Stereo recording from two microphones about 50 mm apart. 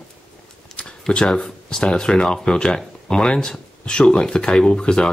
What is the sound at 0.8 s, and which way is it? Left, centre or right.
Speech, centre.